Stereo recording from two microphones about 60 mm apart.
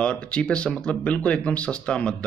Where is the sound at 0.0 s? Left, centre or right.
Centre.